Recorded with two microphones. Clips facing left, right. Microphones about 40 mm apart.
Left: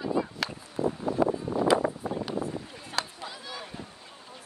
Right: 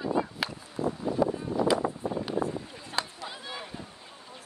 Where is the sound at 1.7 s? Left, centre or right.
Left.